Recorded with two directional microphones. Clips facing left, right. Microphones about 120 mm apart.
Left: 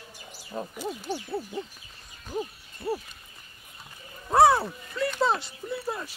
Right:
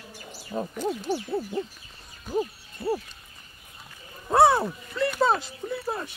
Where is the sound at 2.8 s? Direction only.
10° right (ahead or behind).